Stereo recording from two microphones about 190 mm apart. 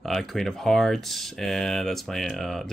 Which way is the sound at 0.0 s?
Centre (ahead or behind).